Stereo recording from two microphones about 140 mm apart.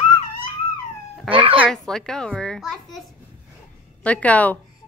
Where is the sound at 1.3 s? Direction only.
40° right (ahead or behind).